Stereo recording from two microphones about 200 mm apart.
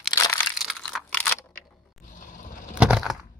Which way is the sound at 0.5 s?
Centre (ahead or behind).